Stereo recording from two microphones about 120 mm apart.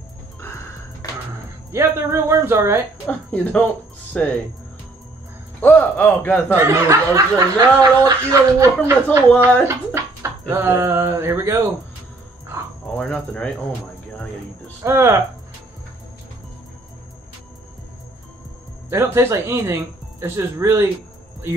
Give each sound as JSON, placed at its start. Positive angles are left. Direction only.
{"t": 1.0, "sound": "music", "side_deg": 30}
{"t": 1.7, "sound": "speech", "side_deg": -20}
{"t": 3.1, "sound": "speech", "side_deg": 10}
{"t": 5.6, "sound": "speech", "side_deg": 15}
{"t": 6.5, "sound": "speech", "side_deg": -25}
{"t": 10.5, "sound": "speech", "side_deg": -20}
{"t": 12.8, "sound": "speech", "side_deg": 5}
{"t": 14.8, "sound": "speech", "side_deg": -20}
{"t": 18.9, "sound": "speech", "side_deg": -20}